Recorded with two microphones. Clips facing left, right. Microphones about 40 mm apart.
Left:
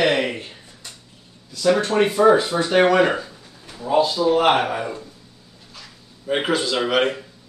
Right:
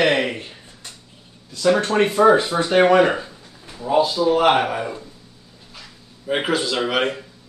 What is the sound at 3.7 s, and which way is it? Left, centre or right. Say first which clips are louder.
Speech: right 1 dB; centre.